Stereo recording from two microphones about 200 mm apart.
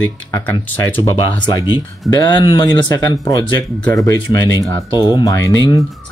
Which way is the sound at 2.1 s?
20° left (ahead or behind).